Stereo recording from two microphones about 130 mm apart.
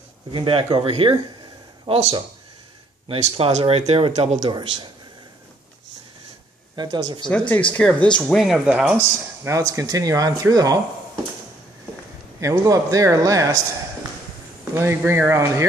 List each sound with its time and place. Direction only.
0.3 s speech: 40° right (ahead or behind)
4.5 s speech: 35° right (ahead or behind)
6.7 s a sound: 35° right (ahead or behind)
7.2 s speech: 10° left (ahead or behind)
8.3 s speech: centre (ahead or behind)
9.4 s speech: 25° right (ahead or behind)
12.4 s speech: 25° right (ahead or behind)
14.7 s speech: 20° right (ahead or behind)